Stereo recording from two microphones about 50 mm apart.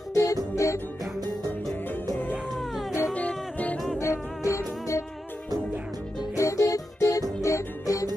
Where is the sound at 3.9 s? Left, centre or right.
Left.